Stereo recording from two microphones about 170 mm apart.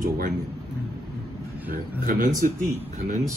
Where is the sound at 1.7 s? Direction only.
55° right (ahead or behind).